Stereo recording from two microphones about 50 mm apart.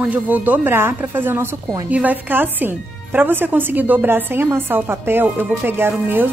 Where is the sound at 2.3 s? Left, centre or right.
Right.